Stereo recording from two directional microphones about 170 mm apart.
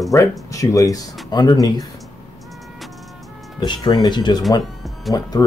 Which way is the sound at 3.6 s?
25° left (ahead or behind).